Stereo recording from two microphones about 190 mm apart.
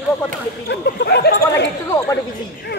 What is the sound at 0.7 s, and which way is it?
Speech, 60° left (ahead or behind).